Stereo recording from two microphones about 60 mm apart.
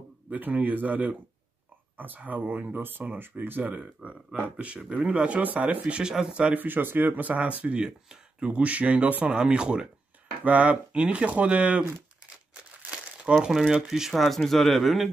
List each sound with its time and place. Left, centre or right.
0.3 s speech: right
6.5 s speech: right
13.3 s speech: centre